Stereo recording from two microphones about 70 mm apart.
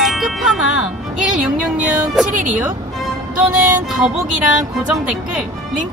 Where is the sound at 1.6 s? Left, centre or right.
Centre.